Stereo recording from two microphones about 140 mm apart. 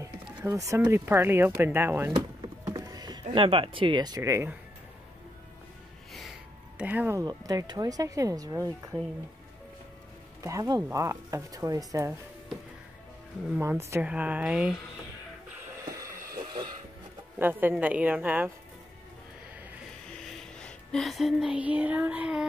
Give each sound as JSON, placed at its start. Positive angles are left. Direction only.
{"t": 0.5, "sound": "speech", "side_deg": -20}
{"t": 2.1, "sound": "a sound", "side_deg": -25}
{"t": 3.4, "sound": "speech", "side_deg": -40}
{"t": 6.8, "sound": "speech", "side_deg": -10}
{"t": 7.2, "sound": "speech", "side_deg": -25}
{"t": 10.4, "sound": "speech", "side_deg": -25}
{"t": 13.5, "sound": "speech", "side_deg": -15}
{"t": 17.4, "sound": "speech", "side_deg": -15}
{"t": 20.1, "sound": "music", "side_deg": 5}